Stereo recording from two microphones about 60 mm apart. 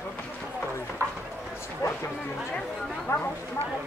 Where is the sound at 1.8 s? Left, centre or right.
Left.